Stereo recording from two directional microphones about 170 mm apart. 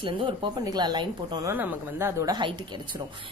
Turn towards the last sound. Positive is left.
turn(degrees=-25)  # may be behind; listen again after turning